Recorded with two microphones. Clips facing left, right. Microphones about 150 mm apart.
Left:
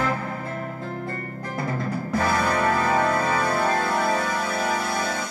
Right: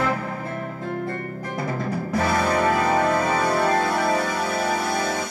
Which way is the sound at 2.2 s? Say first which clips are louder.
Right 2 dB; 5° right (ahead or behind).